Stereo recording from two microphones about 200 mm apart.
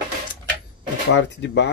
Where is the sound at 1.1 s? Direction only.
60° left (ahead or behind).